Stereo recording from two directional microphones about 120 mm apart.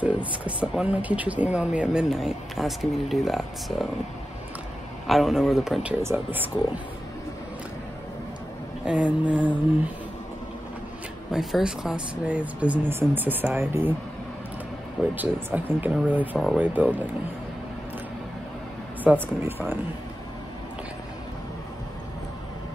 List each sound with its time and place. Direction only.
0.0 s a sound: 10° right (ahead or behind)
0.6 s speech: 10° right (ahead or behind)
5.0 s a man's voice: centre (ahead or behind); by 6.5 s 15° right (ahead or behind)
8.8 s speech: 10° right (ahead or behind)
11.3 s speech: 5° right (ahead or behind)
15.1 s speech: 15° right (ahead or behind)
19.0 s speech: 15° right (ahead or behind)